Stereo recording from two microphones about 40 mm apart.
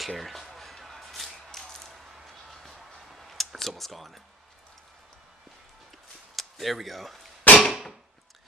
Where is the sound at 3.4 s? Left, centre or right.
Centre.